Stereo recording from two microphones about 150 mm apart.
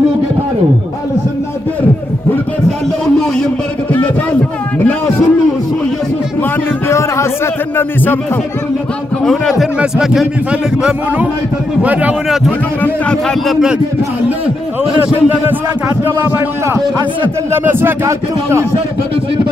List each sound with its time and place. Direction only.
4.7 s a sound: 15° left (ahead or behind)
6.9 s a sound: 20° left (ahead or behind)
7.7 s a man's voice: 15° left (ahead or behind)
9.2 s a man's voice: centre (ahead or behind)
12.8 s a man's voice: 10° left (ahead or behind)
16.0 s a man's voice: 15° right (ahead or behind)